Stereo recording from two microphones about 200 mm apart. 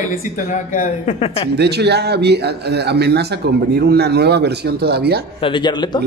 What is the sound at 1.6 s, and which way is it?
Speech, 55° right (ahead or behind).